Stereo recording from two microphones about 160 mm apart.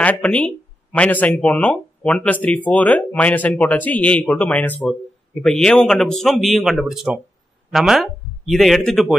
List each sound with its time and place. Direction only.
0.0 s speech: 10° left (ahead or behind)